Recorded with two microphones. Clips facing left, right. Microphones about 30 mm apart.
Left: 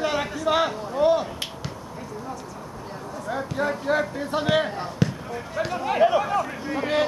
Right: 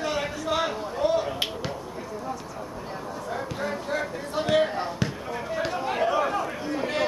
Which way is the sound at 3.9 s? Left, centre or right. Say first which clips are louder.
Left 5 dB; centre.